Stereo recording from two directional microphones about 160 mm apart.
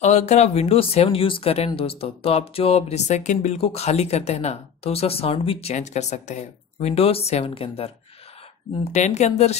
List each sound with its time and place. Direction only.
0.0 s speech: 45° left (ahead or behind)